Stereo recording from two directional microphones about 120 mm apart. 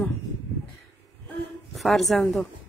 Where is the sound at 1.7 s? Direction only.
Centre (ahead or behind).